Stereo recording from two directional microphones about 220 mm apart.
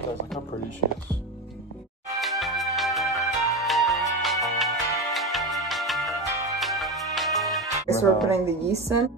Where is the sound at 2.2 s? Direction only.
Centre (ahead or behind).